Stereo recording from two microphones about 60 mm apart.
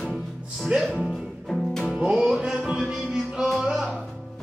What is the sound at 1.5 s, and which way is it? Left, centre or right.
Music, centre.